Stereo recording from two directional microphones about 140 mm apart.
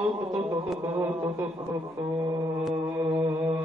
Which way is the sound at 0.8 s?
15° right (ahead or behind).